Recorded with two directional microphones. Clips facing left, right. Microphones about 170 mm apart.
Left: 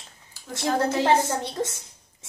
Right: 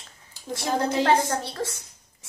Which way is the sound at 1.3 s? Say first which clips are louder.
Left 1 dB; 20° left (ahead or behind).